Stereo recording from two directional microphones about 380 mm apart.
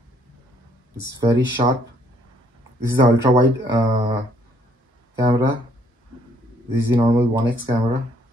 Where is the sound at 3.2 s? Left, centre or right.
Centre.